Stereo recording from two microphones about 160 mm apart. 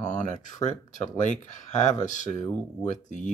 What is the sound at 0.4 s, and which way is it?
Speech, 50° left (ahead or behind).